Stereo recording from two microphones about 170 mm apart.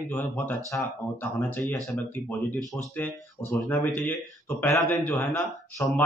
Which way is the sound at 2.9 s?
10° left (ahead or behind).